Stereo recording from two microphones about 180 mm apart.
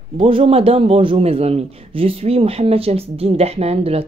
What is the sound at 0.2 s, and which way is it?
A man's voice, 30° right (ahead or behind).